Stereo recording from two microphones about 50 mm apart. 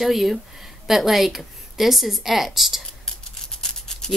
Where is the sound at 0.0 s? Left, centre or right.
Centre.